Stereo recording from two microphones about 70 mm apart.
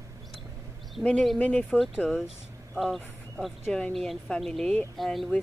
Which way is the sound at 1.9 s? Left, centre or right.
Centre.